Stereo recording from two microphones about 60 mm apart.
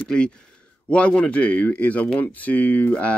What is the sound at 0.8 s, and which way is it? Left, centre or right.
Speech, centre.